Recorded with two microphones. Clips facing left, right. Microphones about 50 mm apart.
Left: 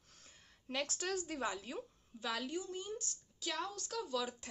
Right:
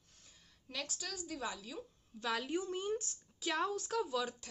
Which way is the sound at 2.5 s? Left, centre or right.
Right.